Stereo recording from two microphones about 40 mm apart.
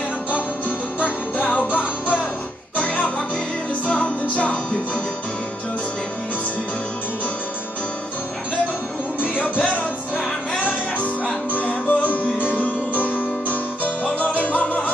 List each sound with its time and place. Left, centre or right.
0.3 s music: right
1.4 s music: left
9.2 s music: left
11.5 s music: left